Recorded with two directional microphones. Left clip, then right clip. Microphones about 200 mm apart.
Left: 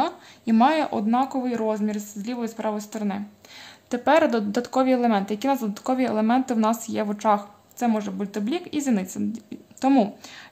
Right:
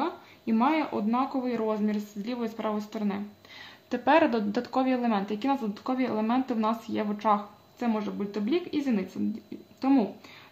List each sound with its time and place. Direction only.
0.0 s a woman's voice: 50° left (ahead or behind)